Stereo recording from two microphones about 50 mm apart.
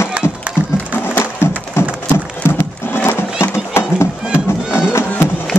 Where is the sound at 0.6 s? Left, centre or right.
Left.